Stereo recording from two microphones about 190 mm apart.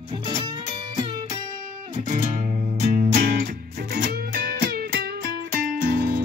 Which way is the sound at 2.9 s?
50° right (ahead or behind).